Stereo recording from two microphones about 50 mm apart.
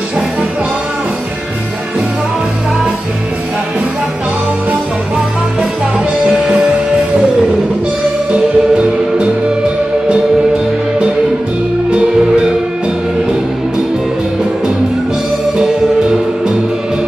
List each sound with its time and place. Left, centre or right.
8.3 s music: right
15.5 s music: centre